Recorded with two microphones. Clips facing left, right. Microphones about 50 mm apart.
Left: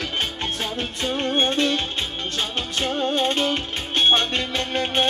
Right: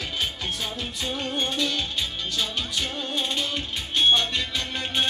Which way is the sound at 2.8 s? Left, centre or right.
Left.